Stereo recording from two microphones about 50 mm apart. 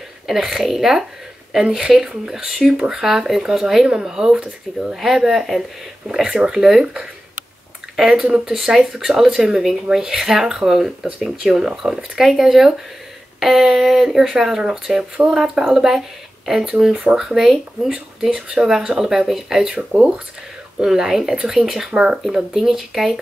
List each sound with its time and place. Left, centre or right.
0.3 s speech: centre
7.9 s speech: centre
17.0 s speech: centre
20.8 s speech: centre